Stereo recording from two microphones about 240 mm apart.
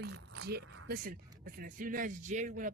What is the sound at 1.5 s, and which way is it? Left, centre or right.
Speech, right.